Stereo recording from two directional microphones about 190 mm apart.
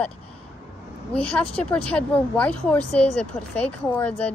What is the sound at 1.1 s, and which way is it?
Speech, 5° left (ahead or behind).